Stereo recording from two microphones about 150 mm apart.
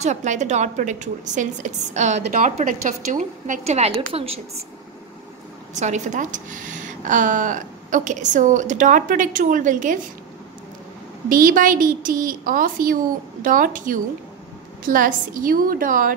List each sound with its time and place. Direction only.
0.0 s a woman's voice: 50° right (ahead or behind)
5.8 s a woman's voice: 50° right (ahead or behind)
11.2 s a woman's voice: 65° right (ahead or behind)